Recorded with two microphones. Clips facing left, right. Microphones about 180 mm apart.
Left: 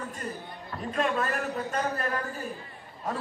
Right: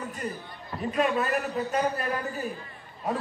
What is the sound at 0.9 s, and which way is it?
A man's voice, 10° right (ahead or behind).